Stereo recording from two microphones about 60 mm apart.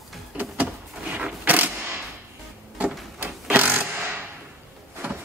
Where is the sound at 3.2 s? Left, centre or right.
Right.